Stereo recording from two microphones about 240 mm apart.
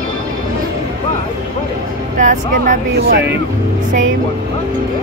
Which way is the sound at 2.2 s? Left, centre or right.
Right.